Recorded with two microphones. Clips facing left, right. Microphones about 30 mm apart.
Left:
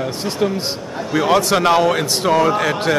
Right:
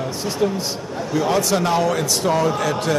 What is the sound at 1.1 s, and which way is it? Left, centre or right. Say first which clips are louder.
A man's voice: left 4 dB; left.